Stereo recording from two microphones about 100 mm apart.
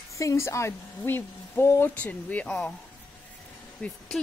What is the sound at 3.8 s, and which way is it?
Speech, 10° left (ahead or behind).